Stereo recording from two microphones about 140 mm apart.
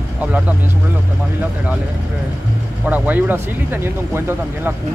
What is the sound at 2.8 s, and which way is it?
Speech, 10° right (ahead or behind).